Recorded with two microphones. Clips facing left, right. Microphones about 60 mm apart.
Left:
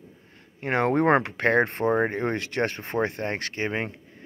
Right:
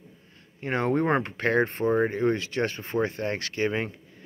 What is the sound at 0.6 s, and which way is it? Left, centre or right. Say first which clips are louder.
Speech: left 2 dB; left.